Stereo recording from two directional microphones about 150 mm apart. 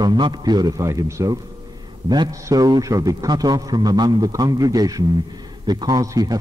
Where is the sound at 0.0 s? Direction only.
30° right (ahead or behind).